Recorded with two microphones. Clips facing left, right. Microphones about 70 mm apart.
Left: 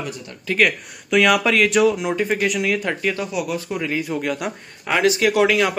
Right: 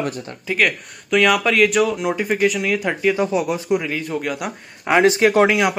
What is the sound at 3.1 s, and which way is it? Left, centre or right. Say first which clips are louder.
Speech: right 5 dB; right.